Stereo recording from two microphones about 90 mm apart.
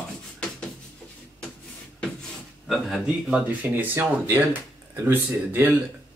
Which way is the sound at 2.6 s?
Centre (ahead or behind).